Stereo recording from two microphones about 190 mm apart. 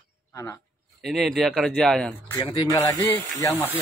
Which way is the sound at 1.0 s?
Centre (ahead or behind).